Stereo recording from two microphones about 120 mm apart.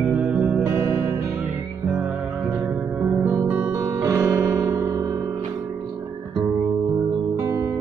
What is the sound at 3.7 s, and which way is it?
Music, 25° right (ahead or behind).